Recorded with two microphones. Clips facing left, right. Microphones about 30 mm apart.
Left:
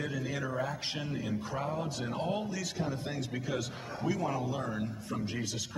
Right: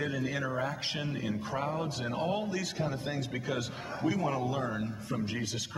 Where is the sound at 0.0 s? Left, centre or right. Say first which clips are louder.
Right 3 dB; centre.